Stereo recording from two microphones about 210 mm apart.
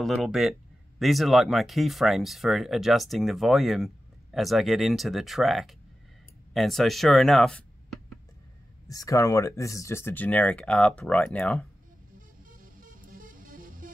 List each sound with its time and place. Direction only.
0.0 s speech: centre (ahead or behind)
8.8 s speech: 15° left (ahead or behind)
12.4 s music: 40° right (ahead or behind)